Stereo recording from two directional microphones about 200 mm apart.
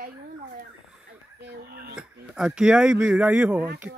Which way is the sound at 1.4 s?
50° right (ahead or behind).